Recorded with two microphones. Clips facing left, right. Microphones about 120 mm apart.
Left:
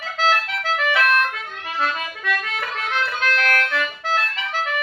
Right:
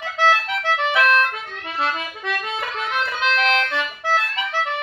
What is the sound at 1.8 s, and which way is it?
Music, 25° right (ahead or behind).